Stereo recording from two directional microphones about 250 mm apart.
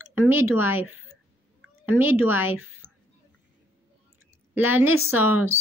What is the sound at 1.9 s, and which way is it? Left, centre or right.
Speech, centre.